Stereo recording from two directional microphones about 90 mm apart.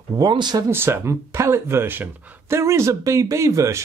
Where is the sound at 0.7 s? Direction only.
25° right (ahead or behind).